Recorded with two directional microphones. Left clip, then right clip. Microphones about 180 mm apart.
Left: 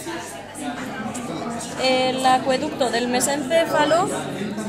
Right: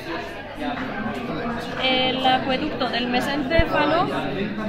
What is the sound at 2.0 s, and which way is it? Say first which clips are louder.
A woman's voice: left 2 dB; 55° left (ahead or behind).